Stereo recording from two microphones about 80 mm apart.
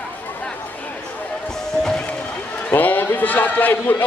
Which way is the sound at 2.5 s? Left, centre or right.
Left.